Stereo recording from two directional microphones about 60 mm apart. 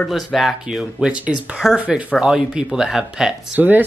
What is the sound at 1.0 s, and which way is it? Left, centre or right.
Speech, centre.